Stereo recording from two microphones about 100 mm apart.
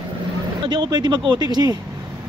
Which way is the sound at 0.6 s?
50° right (ahead or behind).